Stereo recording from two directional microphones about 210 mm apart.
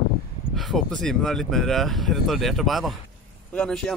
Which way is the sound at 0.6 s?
Centre (ahead or behind).